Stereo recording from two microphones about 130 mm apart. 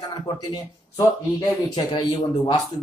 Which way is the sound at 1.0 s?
30° left (ahead or behind).